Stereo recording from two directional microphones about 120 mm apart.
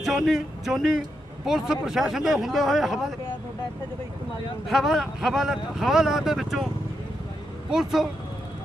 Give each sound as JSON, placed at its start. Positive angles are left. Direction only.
{"t": 0.0, "sound": "a man's voice", "side_deg": -5}
{"t": 4.6, "sound": "a man's voice", "side_deg": -5}
{"t": 7.7, "sound": "a man's voice", "side_deg": -5}